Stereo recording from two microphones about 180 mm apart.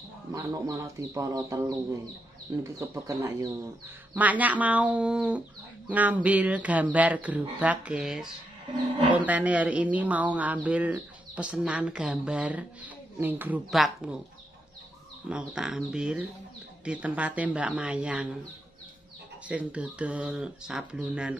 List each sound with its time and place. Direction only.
0.3 s speech: 20° right (ahead or behind)
2.8 s speech: 15° right (ahead or behind)
15.2 s speech: 5° right (ahead or behind)
19.4 s speech: 5° right (ahead or behind)